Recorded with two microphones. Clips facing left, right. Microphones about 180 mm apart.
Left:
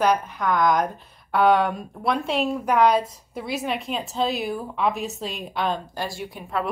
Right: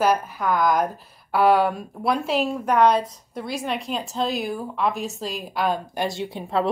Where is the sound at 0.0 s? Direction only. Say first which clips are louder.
Even; 5° right (ahead or behind).